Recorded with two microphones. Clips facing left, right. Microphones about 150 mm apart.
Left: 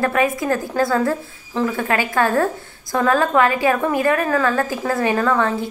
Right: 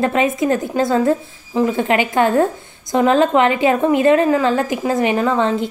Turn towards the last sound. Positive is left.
turn(degrees=-20)  # may be behind; listen again after turning